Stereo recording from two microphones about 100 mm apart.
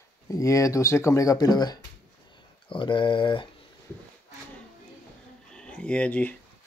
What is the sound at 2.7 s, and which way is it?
Speech, 60° left (ahead or behind).